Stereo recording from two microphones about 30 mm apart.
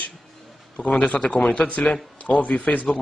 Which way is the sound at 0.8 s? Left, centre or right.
Left.